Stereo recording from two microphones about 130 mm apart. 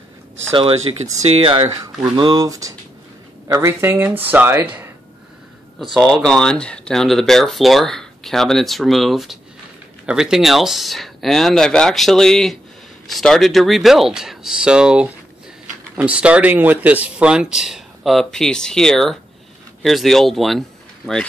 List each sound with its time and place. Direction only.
0.5 s speech: 45° right (ahead or behind)
2.1 s speech: 35° right (ahead or behind); by 4.9 s 15° right (ahead or behind)
5.9 s speech: 5° left (ahead or behind)